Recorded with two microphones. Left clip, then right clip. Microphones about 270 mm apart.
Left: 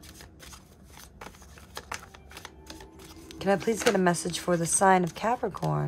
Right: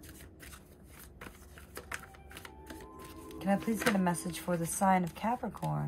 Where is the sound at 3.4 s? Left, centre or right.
Left.